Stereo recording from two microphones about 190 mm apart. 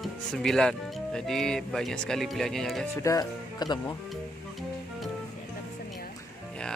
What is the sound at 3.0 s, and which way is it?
Speech, 15° left (ahead or behind).